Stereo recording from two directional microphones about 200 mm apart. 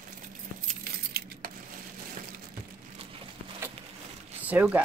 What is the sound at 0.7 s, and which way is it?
Keys jangling, 50° right (ahead or behind).